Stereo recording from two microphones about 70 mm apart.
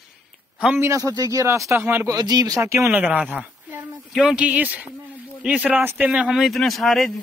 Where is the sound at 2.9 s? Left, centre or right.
Right.